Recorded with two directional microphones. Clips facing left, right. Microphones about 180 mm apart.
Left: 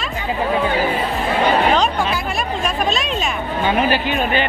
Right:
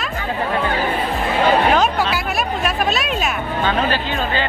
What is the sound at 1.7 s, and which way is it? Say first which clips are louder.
Music: right 1 dB; 5° right (ahead or behind).